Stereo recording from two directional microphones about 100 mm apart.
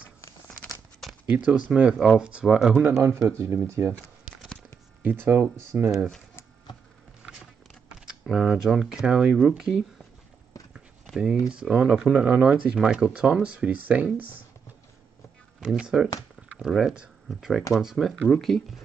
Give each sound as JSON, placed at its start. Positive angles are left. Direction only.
{"t": 1.2, "sound": "speech", "side_deg": -15}
{"t": 2.8, "sound": "speech", "side_deg": -30}
{"t": 5.0, "sound": "speech", "side_deg": -25}
{"t": 8.0, "sound": "speech", "side_deg": -5}
{"t": 11.5, "sound": "speech", "side_deg": -10}
{"t": 15.6, "sound": "speech", "side_deg": -10}